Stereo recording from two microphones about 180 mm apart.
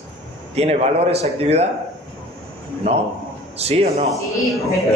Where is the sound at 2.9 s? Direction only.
35° right (ahead or behind).